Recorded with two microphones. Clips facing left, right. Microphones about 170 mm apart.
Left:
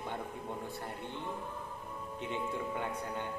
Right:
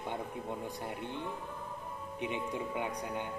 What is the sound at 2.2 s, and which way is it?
Speech, 15° right (ahead or behind).